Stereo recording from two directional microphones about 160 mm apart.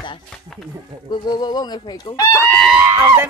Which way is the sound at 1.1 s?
25° left (ahead or behind).